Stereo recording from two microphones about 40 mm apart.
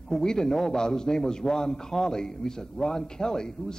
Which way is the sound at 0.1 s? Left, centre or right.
Centre.